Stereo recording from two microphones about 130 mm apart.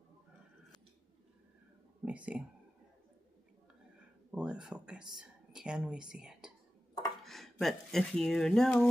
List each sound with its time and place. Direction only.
2.0 s speech: 10° right (ahead or behind)
4.3 s speech: 5° right (ahead or behind)